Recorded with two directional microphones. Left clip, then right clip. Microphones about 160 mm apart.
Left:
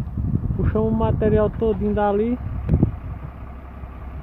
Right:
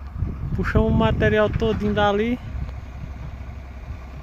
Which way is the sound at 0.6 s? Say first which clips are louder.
Right 1 dB; 20° right (ahead or behind).